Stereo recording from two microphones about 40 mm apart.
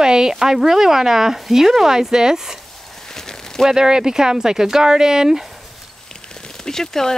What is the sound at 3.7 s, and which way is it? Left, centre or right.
Speech, centre.